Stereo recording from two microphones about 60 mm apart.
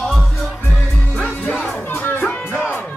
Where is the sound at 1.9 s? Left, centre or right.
Left.